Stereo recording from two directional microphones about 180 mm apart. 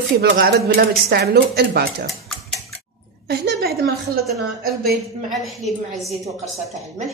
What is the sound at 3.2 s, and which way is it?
Speech, 60° right (ahead or behind).